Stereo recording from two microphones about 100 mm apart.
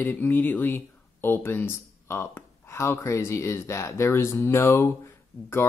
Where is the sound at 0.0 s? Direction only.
20° left (ahead or behind).